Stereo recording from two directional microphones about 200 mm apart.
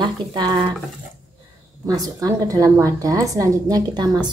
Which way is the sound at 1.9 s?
15° right (ahead or behind).